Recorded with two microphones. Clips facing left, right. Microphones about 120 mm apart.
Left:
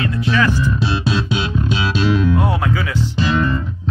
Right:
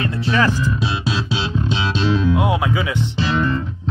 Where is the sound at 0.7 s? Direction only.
20° right (ahead or behind).